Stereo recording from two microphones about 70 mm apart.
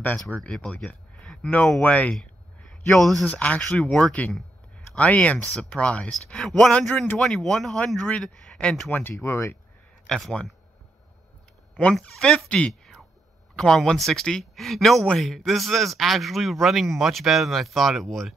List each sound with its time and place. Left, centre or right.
0.0 s speech: left
2.1 s a sound: centre
3.3 s speech: left
9.1 s speech: left
10.0 s speech: centre
12.0 s speech: centre